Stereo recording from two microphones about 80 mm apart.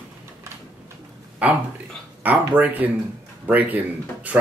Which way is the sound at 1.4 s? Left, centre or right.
Centre.